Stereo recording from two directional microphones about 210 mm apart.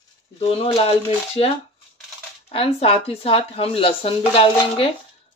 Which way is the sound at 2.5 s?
25° left (ahead or behind).